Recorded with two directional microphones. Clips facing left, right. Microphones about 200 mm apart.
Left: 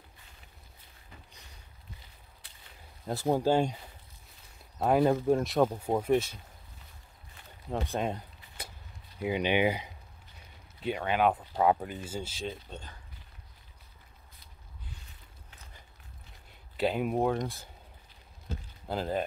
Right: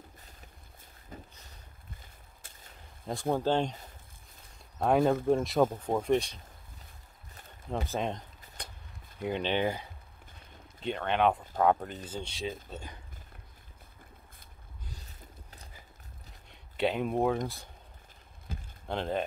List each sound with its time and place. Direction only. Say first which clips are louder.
1.1 s vehicle: right 8 dB; 45° right (ahead or behind)
2.0 s a sound: right 1 dB; 45° right (ahead or behind)
3.3 s speech: left 2 dB; 10° left (ahead or behind)
7.7 s speech: left 1 dB; centre (ahead or behind)
16.7 s speech: even; centre (ahead or behind)
18.9 s speech: even; 5° left (ahead or behind)